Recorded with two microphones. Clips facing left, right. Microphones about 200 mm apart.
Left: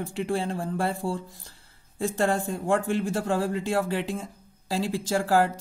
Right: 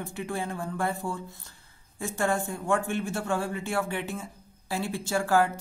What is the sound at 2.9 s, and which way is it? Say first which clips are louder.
Speech: left 3 dB; 35° left (ahead or behind).